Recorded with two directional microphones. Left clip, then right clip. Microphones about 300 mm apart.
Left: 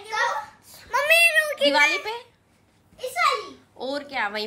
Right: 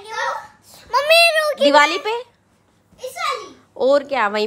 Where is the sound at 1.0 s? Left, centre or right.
Right.